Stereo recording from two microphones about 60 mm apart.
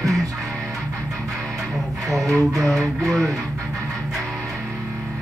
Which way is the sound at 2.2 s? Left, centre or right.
Right.